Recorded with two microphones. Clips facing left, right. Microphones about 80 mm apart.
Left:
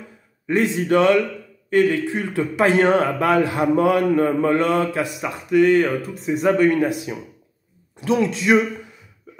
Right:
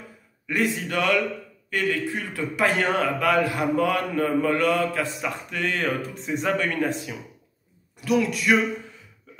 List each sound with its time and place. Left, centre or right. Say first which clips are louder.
0.5 s a man's voice: left 7 dB; left
8.0 s a man's voice: left 3 dB; left